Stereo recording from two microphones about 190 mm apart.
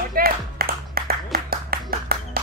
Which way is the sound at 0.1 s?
50° right (ahead or behind).